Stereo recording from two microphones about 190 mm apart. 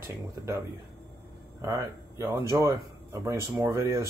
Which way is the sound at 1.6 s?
15° right (ahead or behind).